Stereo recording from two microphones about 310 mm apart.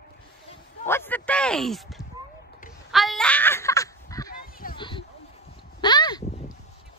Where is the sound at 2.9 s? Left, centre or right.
Centre.